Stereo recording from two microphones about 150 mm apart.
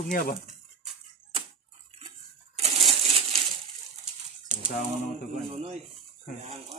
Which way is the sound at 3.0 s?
40° right (ahead or behind).